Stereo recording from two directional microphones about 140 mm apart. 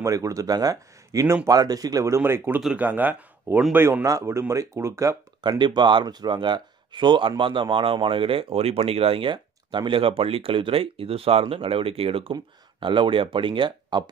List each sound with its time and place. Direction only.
0.0 s speech: 25° right (ahead or behind)
1.6 s speech: 25° right (ahead or behind)
5.4 s speech: 30° right (ahead or behind)